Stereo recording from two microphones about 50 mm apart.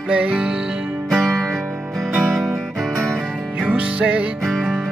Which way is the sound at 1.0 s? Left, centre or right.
Centre.